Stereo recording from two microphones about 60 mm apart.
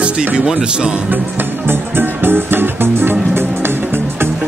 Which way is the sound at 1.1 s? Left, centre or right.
Right.